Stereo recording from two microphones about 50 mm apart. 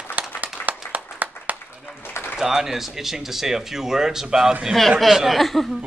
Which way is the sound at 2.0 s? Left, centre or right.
Left.